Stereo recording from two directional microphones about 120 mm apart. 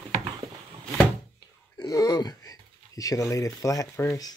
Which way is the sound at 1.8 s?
30° left (ahead or behind).